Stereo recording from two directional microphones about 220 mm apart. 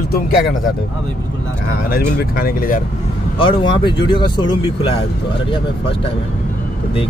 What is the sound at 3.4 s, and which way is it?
Speech, 20° left (ahead or behind).